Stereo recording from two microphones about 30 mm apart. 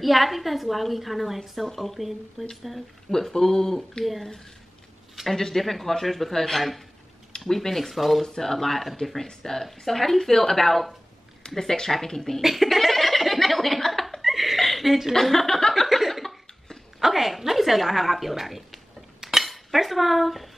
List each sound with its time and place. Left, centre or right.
0.0 s a woman's voice: centre
3.1 s speech: centre
5.3 s a woman's voice: centre
11.4 s speech: left
11.9 s speech: centre
12.4 s a sound: centre
15.1 s speech: centre
15.7 s a sound: centre
17.0 s a woman's voice: centre